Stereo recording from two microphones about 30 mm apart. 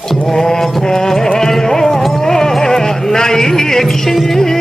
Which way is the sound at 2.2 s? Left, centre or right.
Centre.